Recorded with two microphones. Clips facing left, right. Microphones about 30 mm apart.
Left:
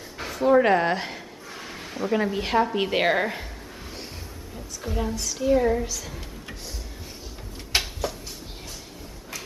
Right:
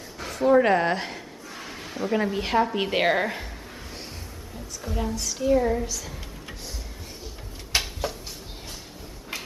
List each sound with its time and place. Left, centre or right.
0.3 s a man's voice: centre
4.8 s a woman's voice: centre
8.0 s a sound: centre